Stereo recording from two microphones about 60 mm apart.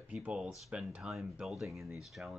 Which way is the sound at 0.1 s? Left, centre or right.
Centre.